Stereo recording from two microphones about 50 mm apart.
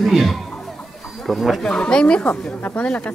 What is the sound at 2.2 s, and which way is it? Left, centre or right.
Speech, left.